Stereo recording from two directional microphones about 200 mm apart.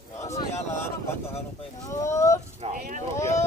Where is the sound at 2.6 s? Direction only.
40° right (ahead or behind).